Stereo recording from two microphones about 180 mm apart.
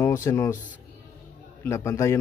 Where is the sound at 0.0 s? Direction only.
15° left (ahead or behind).